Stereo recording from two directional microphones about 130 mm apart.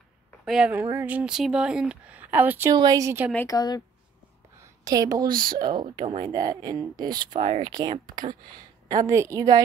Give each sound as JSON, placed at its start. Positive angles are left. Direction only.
{"t": 0.5, "sound": "speech", "side_deg": -10}
{"t": 2.7, "sound": "a woman's voice", "side_deg": -30}
{"t": 3.4, "sound": "a woman's voice", "side_deg": 30}
{"t": 4.6, "sound": "a sound", "side_deg": -25}
{"t": 5.3, "sound": "speech", "side_deg": -90}
{"t": 5.6, "sound": "speech", "side_deg": -35}
{"t": 7.3, "sound": "speech", "side_deg": -50}
{"t": 7.7, "sound": "a woman's voice", "side_deg": -35}